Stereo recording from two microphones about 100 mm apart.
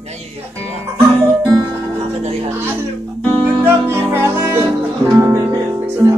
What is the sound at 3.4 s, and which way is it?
Music, 20° right (ahead or behind).